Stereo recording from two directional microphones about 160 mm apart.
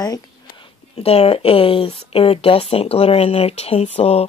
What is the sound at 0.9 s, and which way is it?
Speech, 40° left (ahead or behind).